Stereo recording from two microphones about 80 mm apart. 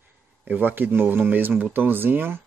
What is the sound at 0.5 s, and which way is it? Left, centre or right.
A man's voice, right.